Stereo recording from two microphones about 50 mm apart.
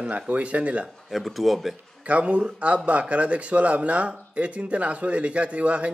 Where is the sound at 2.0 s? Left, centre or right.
Right.